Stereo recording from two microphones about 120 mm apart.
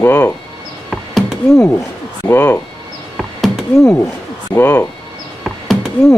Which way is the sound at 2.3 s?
15° left (ahead or behind).